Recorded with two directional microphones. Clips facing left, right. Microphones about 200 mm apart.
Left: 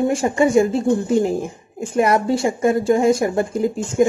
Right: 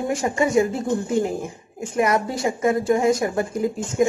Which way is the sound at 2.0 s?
30° left (ahead or behind).